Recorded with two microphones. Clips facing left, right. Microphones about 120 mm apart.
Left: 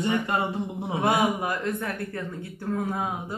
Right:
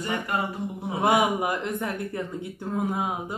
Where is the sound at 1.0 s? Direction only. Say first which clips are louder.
Right 2 dB; 20° right (ahead or behind).